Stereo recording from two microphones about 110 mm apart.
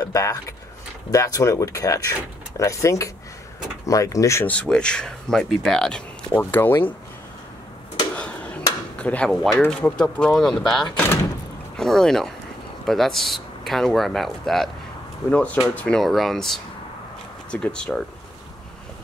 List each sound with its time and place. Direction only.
0.0 s speech: 30° left (ahead or behind)
4.5 s speech: 10° left (ahead or behind)
6.5 s speech: 20° left (ahead or behind)
8.1 s a sound: 10° left (ahead or behind)
9.3 s speech: centre (ahead or behind)
9.7 s speech: 10° left (ahead or behind)
15.7 s speech: 10° left (ahead or behind)
16.0 s speech: centre (ahead or behind)